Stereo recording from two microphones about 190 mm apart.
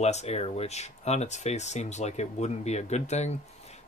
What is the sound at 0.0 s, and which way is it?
Speech, 35° left (ahead or behind).